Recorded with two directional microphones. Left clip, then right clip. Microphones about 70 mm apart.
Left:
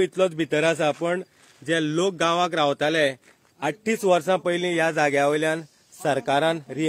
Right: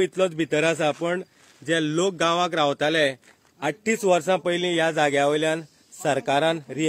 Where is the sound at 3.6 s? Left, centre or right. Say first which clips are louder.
Even; centre.